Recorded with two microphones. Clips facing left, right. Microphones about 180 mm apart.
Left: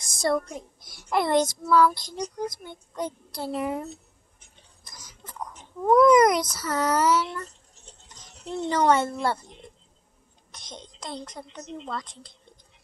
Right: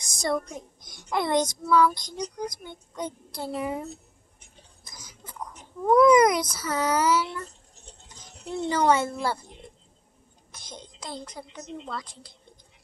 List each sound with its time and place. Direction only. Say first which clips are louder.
0.0 s a sound: left 4 dB; 55° left (ahead or behind)
0.3 s a child's voice: left 2 dB; 20° right (ahead or behind)
1.1 s speech: left 2 dB; centre (ahead or behind)
4.8 s a sound: even; centre (ahead or behind)
5.9 s speech: even; centre (ahead or behind)
8.5 s speech: left 1 dB; 5° right (ahead or behind)